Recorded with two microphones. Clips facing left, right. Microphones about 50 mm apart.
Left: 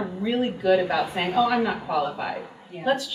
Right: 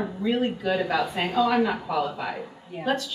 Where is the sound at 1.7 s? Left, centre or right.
Centre.